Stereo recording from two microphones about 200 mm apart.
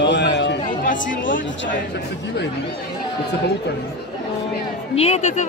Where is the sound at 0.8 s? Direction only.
40° left (ahead or behind).